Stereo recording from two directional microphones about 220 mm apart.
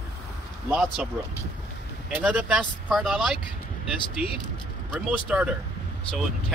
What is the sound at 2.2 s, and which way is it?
Speech, 5° right (ahead or behind).